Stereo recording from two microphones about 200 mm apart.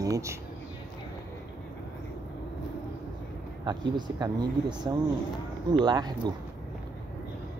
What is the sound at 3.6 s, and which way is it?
Speech, 20° right (ahead or behind).